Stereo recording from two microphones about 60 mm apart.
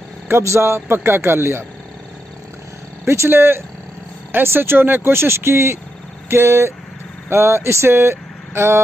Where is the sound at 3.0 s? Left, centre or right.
Right.